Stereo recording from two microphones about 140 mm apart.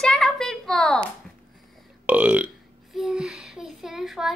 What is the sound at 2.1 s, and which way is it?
Speech, 10° right (ahead or behind).